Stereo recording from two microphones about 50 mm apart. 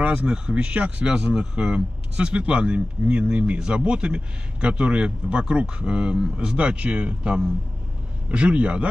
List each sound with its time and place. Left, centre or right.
0.0 s speech: right